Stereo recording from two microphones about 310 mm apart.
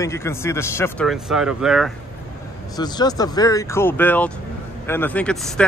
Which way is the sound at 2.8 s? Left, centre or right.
Centre.